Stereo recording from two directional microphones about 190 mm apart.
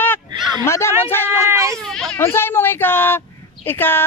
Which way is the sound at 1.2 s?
15° right (ahead or behind).